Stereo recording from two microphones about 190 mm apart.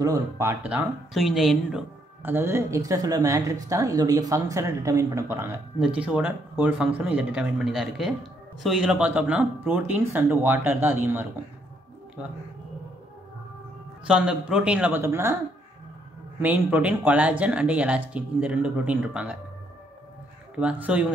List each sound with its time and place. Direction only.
0.0 s speech: 15° right (ahead or behind)
14.0 s speech: 5° right (ahead or behind)
16.3 s speech: 10° right (ahead or behind)
20.5 s speech: 5° right (ahead or behind)